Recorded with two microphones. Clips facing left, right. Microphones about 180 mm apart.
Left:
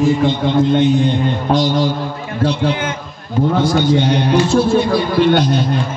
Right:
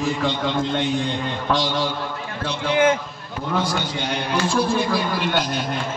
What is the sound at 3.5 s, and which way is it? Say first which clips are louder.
Speech: left 5 dB; 50° left (ahead or behind).